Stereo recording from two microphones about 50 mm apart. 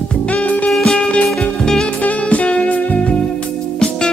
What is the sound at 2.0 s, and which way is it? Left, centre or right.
Music, left.